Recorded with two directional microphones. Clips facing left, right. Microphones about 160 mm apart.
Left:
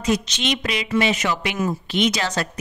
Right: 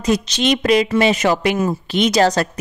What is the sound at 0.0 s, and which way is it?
A woman's voice, 40° right (ahead or behind).